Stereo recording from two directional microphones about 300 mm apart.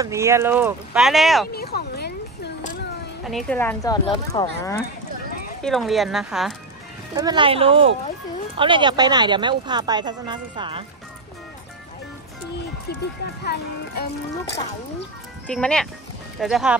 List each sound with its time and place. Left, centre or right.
0.0 s speech: centre
1.5 s a sound: left
3.3 s speech: centre
5.6 s speech: centre
7.2 s speech: centre
13.2 s speech: left
15.4 s speech: centre